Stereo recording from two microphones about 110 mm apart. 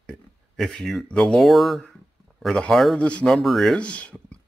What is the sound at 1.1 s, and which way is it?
Speech, 10° left (ahead or behind).